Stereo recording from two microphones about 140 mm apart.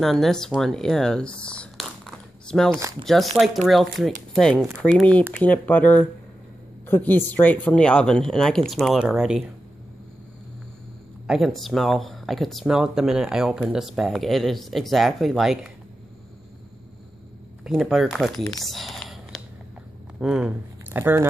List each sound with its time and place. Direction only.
0.0 s speech: centre (ahead or behind)
11.2 s speech: centre (ahead or behind)
17.6 s speech: centre (ahead or behind)
18.6 s a sound: centre (ahead or behind)
20.2 s speech: 5° right (ahead or behind)
21.0 s speech: 20° right (ahead or behind)